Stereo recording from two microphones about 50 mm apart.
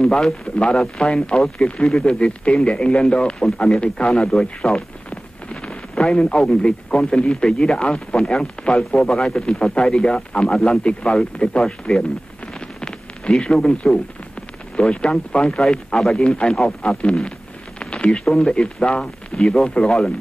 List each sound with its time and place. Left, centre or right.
0.0 s a man's voice: centre
4.3 s a sound: centre
6.4 s speech: centre
9.5 s speech: centre
10.8 s speech: left
12.5 s a sound: centre
14.8 s speech: left
17.7 s a sound: left
18.2 s speech: centre